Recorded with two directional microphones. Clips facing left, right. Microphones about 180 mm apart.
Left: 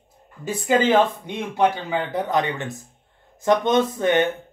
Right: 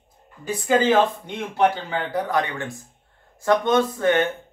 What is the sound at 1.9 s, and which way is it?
Speech, 20° left (ahead or behind).